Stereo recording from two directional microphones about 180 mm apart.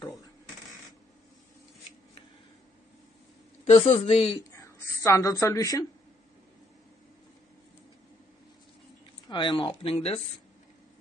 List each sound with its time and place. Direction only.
3.6 s speech: 30° left (ahead or behind)
4.6 s a woman's voice: 15° left (ahead or behind)
9.3 s speech: 25° left (ahead or behind)